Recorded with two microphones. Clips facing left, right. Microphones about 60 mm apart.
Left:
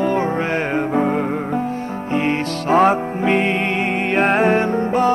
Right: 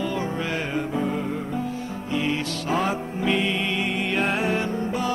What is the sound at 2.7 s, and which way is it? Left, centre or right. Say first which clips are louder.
Music: left 11 dB; left.